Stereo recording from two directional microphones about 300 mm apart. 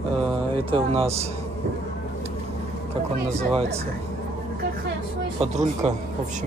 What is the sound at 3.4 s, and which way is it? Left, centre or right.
Speech, centre.